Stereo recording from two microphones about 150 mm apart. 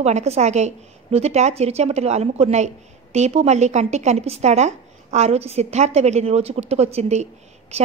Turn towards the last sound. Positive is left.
turn(degrees=-50)  # may be behind; listen again after turning